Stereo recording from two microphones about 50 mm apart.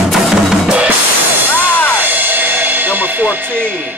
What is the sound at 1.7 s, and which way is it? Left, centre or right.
Music, left.